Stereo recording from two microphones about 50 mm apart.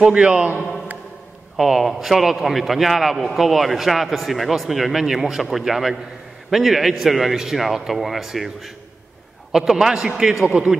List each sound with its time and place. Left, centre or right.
0.0 s a man's voice: right
1.6 s a man's voice: centre